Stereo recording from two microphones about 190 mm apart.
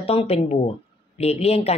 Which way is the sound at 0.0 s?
30° left (ahead or behind).